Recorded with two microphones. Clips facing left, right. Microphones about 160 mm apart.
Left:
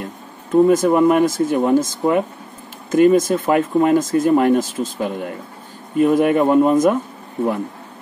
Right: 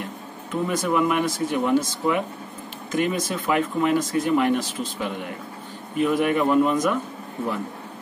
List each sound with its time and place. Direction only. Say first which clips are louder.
0.5 s speech: left 11 dB; 40° left (ahead or behind)